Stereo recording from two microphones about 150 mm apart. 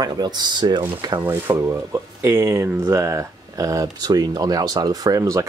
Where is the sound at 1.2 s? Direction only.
15° right (ahead or behind).